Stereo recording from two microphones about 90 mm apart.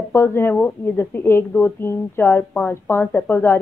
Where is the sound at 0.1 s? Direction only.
25° left (ahead or behind).